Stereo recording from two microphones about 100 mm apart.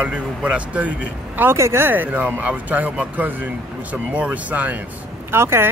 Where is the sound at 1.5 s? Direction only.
25° right (ahead or behind).